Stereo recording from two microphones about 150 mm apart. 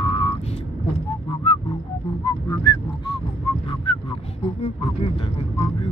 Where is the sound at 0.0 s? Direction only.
35° left (ahead or behind).